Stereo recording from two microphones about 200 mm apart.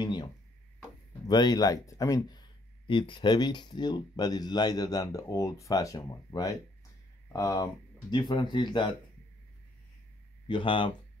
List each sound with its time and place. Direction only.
0.0 s a sound: 20° left (ahead or behind)
1.2 s speech: 20° left (ahead or behind)
10.5 s speech: 25° left (ahead or behind)